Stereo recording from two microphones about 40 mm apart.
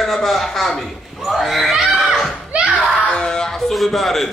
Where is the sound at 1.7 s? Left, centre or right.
Centre.